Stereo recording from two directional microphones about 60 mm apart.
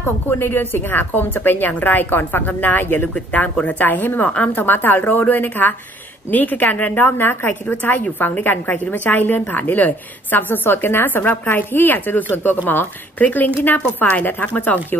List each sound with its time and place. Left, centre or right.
0.0 s a woman's voice: left